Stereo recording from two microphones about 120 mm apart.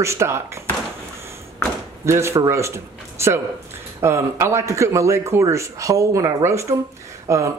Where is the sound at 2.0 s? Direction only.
25° right (ahead or behind).